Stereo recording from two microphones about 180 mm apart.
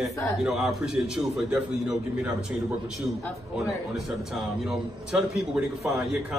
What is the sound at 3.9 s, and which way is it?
A man's voice, centre (ahead or behind).